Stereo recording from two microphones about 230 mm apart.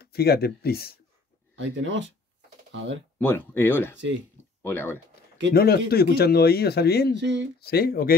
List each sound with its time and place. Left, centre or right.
0.0 s speech: left
1.6 s speech: right
3.2 s speech: centre
5.5 s speech: left
7.2 s speech: right
7.6 s speech: left